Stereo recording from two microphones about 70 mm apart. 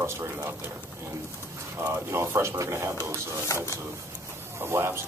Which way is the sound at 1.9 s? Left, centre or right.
Right.